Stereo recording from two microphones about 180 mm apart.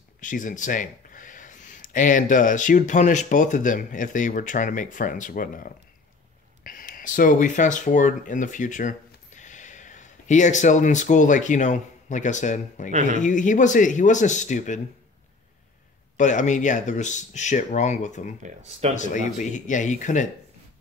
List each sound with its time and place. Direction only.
0.2 s speech: 45° left (ahead or behind)
12.9 s speech: 40° right (ahead or behind)
13.2 s speech: 45° left (ahead or behind)
16.2 s speech: 45° left (ahead or behind)
18.4 s speech: 40° right (ahead or behind)
18.9 s speech: 45° left (ahead or behind)